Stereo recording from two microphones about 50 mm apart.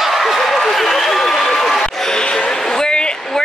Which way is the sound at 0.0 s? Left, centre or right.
Centre.